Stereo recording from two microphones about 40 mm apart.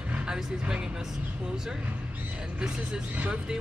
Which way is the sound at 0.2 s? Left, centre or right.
Right.